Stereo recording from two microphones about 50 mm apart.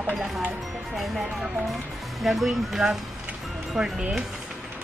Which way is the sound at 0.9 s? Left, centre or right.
Centre.